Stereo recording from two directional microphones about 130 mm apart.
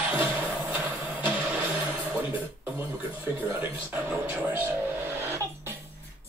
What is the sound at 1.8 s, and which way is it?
Music, 10° right (ahead or behind).